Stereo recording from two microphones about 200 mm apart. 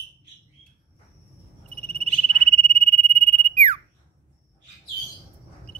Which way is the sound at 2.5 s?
30° right (ahead or behind).